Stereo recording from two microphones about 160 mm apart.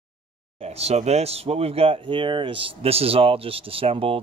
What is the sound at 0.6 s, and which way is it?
Speech, 40° right (ahead or behind).